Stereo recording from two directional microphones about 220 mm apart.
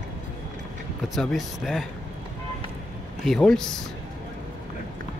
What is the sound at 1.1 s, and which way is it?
Speech, centre (ahead or behind).